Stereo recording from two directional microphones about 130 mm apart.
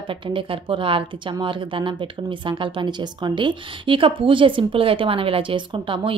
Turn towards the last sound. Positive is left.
turn(degrees=-40)  # may be behind; listen again after turning